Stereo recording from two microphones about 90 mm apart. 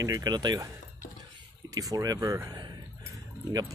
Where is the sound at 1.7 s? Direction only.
40° right (ahead or behind).